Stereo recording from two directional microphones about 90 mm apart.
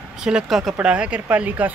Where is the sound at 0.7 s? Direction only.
15° right (ahead or behind).